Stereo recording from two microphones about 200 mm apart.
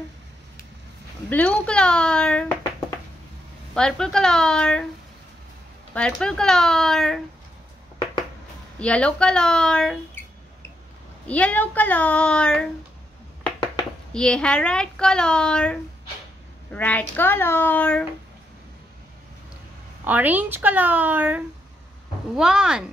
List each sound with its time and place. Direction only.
1.3 s a woman's voice: 5° left (ahead or behind)
3.7 s speech: 5° left (ahead or behind)
5.9 s speech: 5° left (ahead or behind)
8.7 s speech: 5° left (ahead or behind)
11.2 s a child's voice: 5° left (ahead or behind)
14.1 s a child's voice: 5° left (ahead or behind)
20.1 s a woman's voice: 10° right (ahead or behind)